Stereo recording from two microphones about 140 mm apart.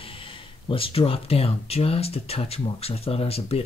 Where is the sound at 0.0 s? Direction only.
40° left (ahead or behind).